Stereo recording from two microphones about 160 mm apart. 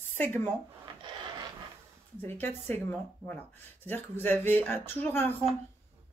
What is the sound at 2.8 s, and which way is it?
Speech, 10° left (ahead or behind).